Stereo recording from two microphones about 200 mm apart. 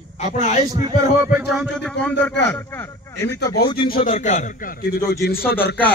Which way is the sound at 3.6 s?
25° left (ahead or behind).